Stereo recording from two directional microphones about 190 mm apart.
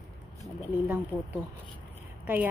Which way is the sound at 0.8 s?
10° right (ahead or behind).